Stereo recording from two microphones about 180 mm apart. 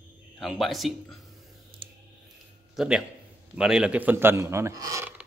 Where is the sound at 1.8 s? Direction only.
30° right (ahead or behind).